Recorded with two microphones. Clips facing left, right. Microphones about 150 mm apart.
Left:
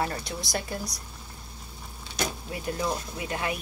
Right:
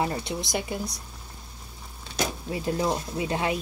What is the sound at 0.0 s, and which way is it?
Speech, 20° right (ahead or behind).